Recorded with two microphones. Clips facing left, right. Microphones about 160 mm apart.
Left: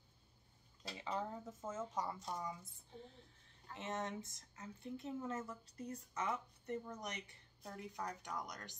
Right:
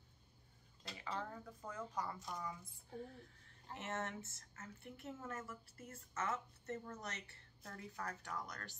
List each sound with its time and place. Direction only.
1.0 s a woman's voice: 20° left (ahead or behind)